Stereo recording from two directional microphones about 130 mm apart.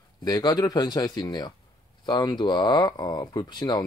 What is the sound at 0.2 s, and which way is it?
Speech, 30° left (ahead or behind).